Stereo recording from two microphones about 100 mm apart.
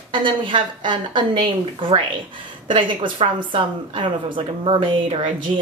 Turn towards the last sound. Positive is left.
turn(degrees=-55)  # may be behind; listen again after turning